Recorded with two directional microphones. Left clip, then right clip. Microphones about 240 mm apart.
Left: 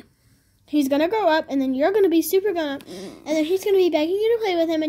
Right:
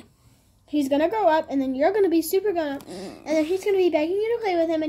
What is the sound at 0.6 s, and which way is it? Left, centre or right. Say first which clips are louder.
A woman's voice: left 2 dB; left.